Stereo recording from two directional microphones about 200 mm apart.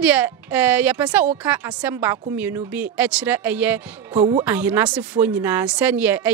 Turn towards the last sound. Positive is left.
turn(degrees=-10)  # may be behind; listen again after turning